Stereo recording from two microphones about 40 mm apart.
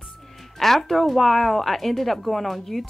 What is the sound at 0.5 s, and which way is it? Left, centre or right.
Speech, centre.